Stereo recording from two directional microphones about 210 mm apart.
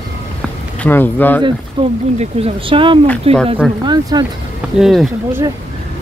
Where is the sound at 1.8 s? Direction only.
30° right (ahead or behind).